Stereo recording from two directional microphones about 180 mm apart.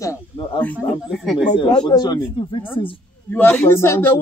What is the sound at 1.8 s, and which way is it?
Speech, 20° left (ahead or behind).